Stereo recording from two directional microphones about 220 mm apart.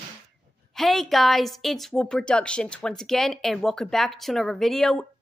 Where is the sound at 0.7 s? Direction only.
Centre (ahead or behind).